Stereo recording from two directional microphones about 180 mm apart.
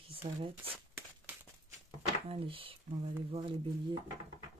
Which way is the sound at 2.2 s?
30° right (ahead or behind).